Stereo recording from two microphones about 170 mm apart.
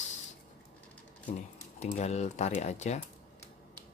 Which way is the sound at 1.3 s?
40° left (ahead or behind).